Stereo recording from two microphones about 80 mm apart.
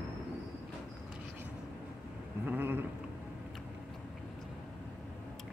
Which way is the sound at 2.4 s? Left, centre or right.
Right.